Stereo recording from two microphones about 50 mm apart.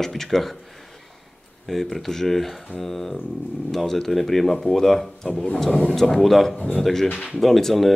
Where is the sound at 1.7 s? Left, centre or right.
Centre.